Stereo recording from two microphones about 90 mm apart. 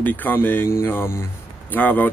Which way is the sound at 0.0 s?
20° left (ahead or behind).